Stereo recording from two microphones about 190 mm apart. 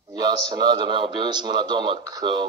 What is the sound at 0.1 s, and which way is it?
A man's voice, 20° right (ahead or behind).